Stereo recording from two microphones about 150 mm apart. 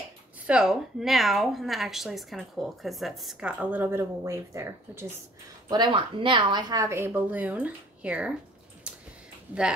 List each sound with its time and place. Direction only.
0.5 s a woman's voice: 5° right (ahead or behind)
5.7 s a woman's voice: 30° right (ahead or behind); by 8.3 s 10° right (ahead or behind)
8.9 s a sound: 5° right (ahead or behind)
9.5 s a woman's voice: 5° right (ahead or behind)